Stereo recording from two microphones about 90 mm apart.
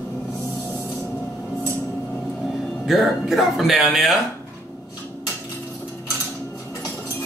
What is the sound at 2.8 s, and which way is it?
Speech, 5° right (ahead or behind).